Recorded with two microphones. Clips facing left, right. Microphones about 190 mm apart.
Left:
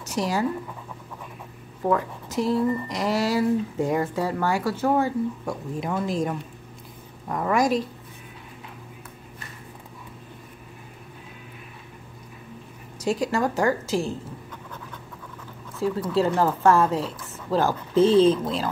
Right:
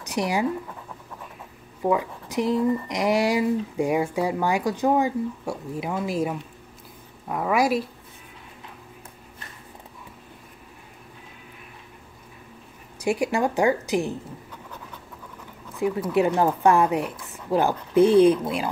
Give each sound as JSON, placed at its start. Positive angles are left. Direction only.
{"t": 0.0, "sound": "speech", "side_deg": -15}
{"t": 1.8, "sound": "speech", "side_deg": -10}
{"t": 13.0, "sound": "speech", "side_deg": -15}
{"t": 15.7, "sound": "a sound", "side_deg": -15}
{"t": 16.1, "sound": "speech", "side_deg": -15}